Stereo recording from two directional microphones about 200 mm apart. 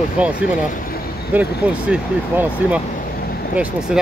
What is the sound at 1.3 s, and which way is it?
Speech, 5° right (ahead or behind).